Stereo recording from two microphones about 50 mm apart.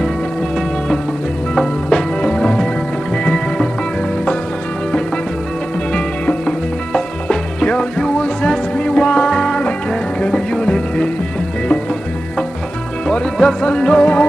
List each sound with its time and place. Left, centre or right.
1.9 s music: centre
5.9 s music: centre
13.0 s music: centre